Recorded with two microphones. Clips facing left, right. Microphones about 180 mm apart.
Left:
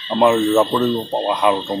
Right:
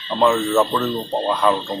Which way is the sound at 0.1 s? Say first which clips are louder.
Left 3 dB; 15° left (ahead or behind).